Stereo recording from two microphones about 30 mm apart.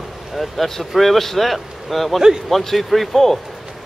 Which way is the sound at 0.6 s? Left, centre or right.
Centre.